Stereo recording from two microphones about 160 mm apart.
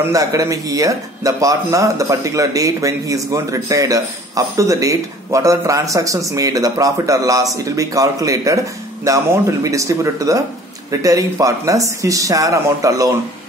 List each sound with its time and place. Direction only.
0.1 s speech: 20° right (ahead or behind)